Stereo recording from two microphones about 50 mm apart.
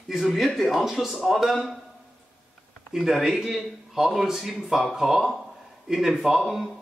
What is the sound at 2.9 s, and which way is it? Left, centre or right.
A man's voice, centre.